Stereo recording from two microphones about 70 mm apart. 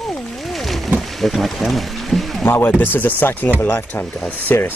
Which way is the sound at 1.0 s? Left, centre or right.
Centre.